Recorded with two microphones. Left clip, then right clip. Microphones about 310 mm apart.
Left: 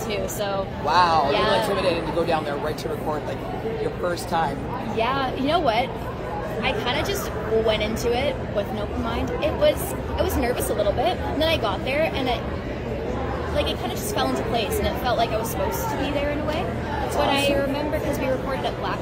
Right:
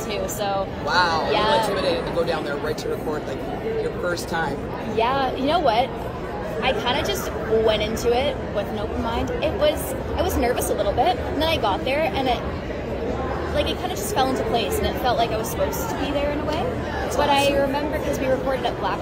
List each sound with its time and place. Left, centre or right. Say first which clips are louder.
0.8 s speech: left 2 dB; centre
4.9 s speech: right 3 dB; centre
14.5 s speech: right 1 dB; centre
17.2 s speech: right 3 dB; centre